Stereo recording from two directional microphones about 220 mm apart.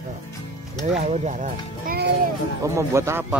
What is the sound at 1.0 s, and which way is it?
Music, 30° right (ahead or behind).